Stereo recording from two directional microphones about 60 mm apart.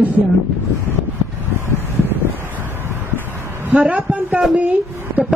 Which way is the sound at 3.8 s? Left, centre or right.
Right.